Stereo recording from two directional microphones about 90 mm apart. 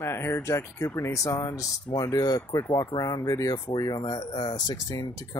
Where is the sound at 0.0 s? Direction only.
30° left (ahead or behind).